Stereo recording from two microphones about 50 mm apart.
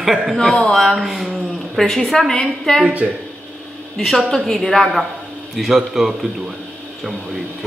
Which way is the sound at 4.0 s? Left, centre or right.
Centre.